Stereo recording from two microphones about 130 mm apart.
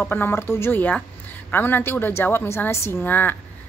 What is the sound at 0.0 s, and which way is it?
Speech, 15° left (ahead or behind).